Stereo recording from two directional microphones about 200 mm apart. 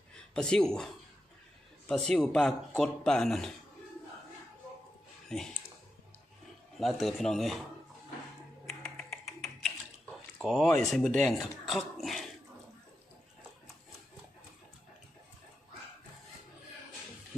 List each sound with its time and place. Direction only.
0.3 s speech: 5° left (ahead or behind)
1.9 s speech: 5° left (ahead or behind)
5.3 s speech: centre (ahead or behind)
6.8 s speech: centre (ahead or behind)
8.6 s a sound: centre (ahead or behind)
10.4 s speech: centre (ahead or behind)